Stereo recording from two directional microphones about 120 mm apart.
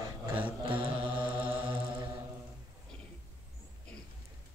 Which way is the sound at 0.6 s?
45° right (ahead or behind).